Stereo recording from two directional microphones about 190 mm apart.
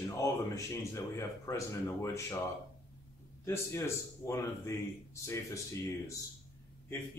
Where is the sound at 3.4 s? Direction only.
15° left (ahead or behind).